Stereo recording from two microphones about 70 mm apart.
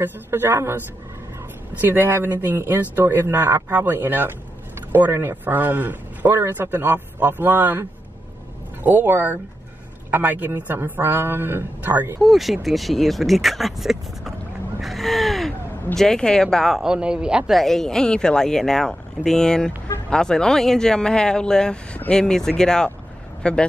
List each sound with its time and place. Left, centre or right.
0.0 s a man's voice: right
8.8 s a man's voice: right
12.2 s speech: centre
14.8 s gasp: centre
16.7 s speech: centre
17.5 s speech: centre